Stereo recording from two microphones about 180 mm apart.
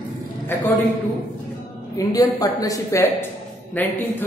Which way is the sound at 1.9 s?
20° left (ahead or behind).